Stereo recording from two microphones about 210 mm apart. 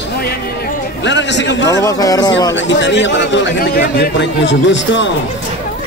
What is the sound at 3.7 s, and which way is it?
Speech, 45° left (ahead or behind).